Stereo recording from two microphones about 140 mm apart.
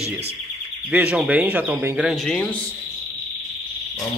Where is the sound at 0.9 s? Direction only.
5° right (ahead or behind).